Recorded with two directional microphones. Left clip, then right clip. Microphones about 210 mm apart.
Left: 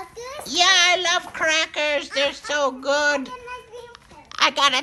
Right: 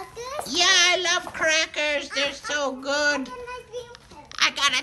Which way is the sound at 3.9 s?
5° left (ahead or behind).